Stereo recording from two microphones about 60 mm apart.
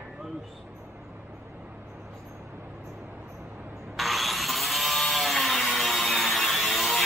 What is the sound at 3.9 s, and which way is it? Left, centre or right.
Wood, centre.